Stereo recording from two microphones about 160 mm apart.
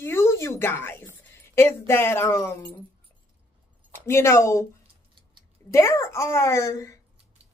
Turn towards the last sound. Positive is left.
turn(degrees=20)  # may be behind; listen again after turning